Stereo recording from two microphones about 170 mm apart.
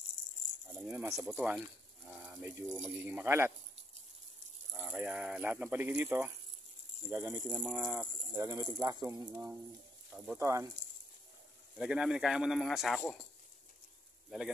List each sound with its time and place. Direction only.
0.8 s speech: 15° right (ahead or behind)
1.2 s speech: 5° right (ahead or behind)
4.7 s speech: 10° right (ahead or behind)
10.1 s speech: 5° right (ahead or behind)
11.8 s speech: 5° right (ahead or behind)